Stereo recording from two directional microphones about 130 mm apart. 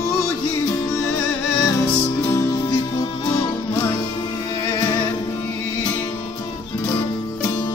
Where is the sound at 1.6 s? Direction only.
25° left (ahead or behind).